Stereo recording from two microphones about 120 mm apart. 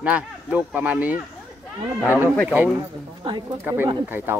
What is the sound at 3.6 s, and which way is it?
Speech, 20° right (ahead or behind).